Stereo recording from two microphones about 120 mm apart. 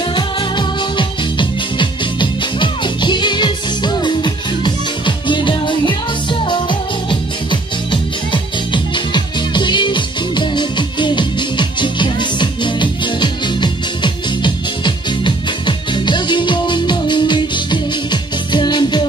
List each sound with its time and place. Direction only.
0.1 s music: 40° left (ahead or behind)